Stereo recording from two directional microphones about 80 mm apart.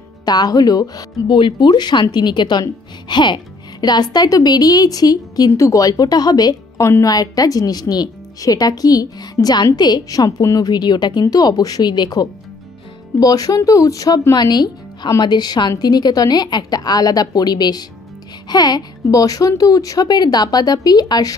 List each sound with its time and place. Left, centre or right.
0.2 s speech: left
1.3 s a woman's voice: left
3.8 s speech: left
6.8 s speech: left
7.1 s speech: left
10.7 s a woman's voice: left
11.2 s a woman's voice: left
13.2 s speech: left
14.3 s a woman's voice: left